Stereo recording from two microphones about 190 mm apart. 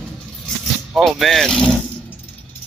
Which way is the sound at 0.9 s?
Centre (ahead or behind).